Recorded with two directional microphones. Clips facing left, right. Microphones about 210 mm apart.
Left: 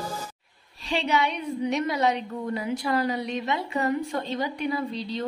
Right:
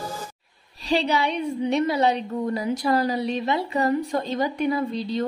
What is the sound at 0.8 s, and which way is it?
A woman's voice, 35° right (ahead or behind).